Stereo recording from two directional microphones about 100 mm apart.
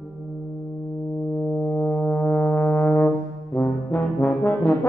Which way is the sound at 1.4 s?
20° left (ahead or behind).